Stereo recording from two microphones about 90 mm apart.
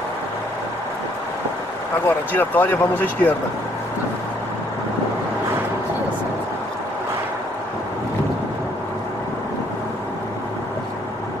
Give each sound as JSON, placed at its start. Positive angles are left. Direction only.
{"t": 2.0, "sound": "speech", "side_deg": 20}